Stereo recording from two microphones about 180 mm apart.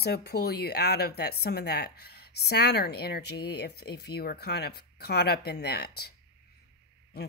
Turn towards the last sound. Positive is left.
turn(degrees=65)  # may be behind; listen again after turning